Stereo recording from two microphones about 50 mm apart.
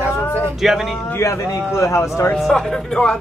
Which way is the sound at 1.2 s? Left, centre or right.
Left.